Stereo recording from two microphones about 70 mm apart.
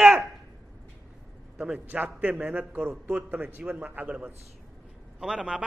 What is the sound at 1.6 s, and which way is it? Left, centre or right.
A man's voice, right.